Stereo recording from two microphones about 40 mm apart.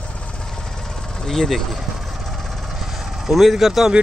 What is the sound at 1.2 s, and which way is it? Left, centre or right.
Speech, centre.